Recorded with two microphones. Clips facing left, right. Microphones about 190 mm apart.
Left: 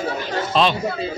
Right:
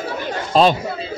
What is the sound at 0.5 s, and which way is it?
Speech, 40° right (ahead or behind).